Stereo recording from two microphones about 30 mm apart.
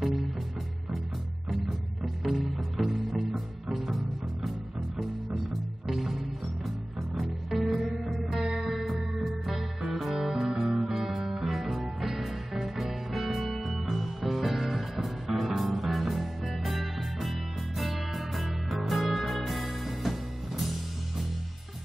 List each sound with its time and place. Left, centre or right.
0.0 s music: centre
2.2 s music: centre
11.5 s music: centre